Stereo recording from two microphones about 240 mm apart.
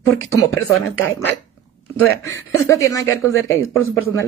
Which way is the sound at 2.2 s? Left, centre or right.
Centre.